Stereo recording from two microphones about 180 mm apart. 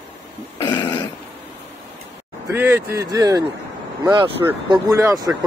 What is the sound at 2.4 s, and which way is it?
A man's voice, 10° right (ahead or behind).